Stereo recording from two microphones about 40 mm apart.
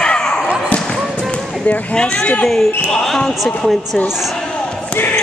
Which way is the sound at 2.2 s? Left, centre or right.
Left.